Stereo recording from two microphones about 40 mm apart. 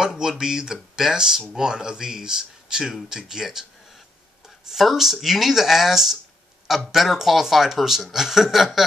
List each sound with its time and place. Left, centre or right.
0.2 s speech: centre
4.6 s speech: centre